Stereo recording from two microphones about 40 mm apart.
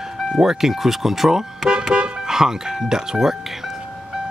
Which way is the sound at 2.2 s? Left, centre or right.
Centre.